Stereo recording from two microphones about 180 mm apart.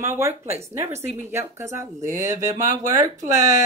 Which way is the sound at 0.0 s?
15° right (ahead or behind).